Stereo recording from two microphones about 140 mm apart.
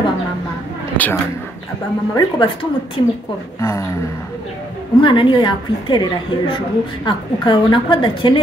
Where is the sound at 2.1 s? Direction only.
35° left (ahead or behind).